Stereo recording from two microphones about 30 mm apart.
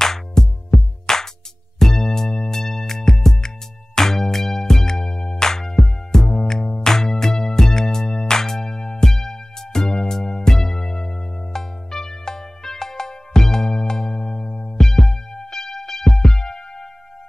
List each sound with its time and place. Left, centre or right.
0.0 s music: centre